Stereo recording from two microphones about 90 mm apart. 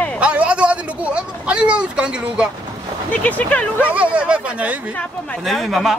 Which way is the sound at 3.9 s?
15° right (ahead or behind).